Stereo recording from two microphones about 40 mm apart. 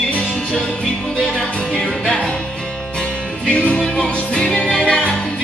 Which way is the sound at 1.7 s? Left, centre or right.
Centre.